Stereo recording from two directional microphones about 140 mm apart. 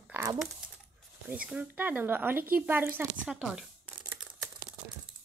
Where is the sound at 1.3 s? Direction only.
10° right (ahead or behind).